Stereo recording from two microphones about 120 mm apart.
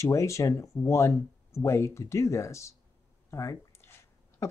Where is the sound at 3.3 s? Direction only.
25° left (ahead or behind).